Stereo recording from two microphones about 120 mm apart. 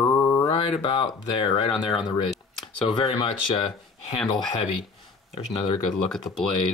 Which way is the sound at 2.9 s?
45° left (ahead or behind).